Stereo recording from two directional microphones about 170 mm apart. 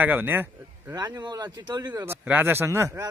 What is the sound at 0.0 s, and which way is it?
Speech, 10° right (ahead or behind).